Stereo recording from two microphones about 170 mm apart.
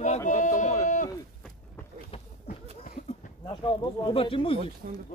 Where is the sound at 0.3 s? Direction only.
45° left (ahead or behind).